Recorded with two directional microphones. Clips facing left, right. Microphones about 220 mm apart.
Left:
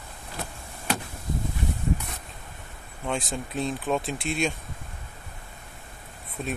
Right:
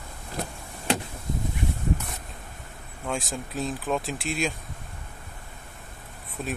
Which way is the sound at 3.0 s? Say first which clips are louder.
Left 1 dB; centre (ahead or behind).